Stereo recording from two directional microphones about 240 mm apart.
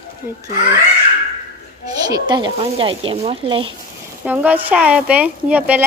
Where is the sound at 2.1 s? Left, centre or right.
Centre.